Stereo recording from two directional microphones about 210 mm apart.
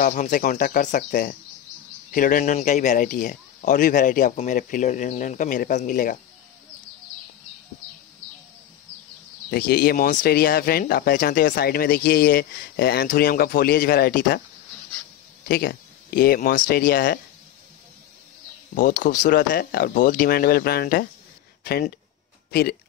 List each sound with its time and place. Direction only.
0.0 s speech: 35° left (ahead or behind)
9.5 s speech: 45° left (ahead or behind)
15.4 s speech: 45° left (ahead or behind)
18.8 s speech: 40° left (ahead or behind)